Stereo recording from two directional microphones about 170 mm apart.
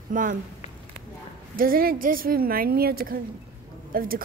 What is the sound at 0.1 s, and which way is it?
Speech, 50° right (ahead or behind).